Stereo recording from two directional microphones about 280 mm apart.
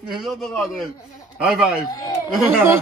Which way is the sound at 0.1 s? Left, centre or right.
Centre.